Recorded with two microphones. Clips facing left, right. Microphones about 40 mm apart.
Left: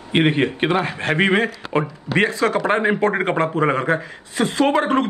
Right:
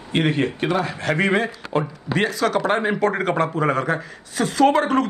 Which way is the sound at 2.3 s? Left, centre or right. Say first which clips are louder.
Left 1 dB; left.